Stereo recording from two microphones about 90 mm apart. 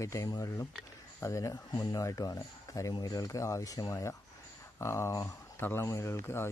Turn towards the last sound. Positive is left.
turn(degrees=30)  # may be behind; listen again after turning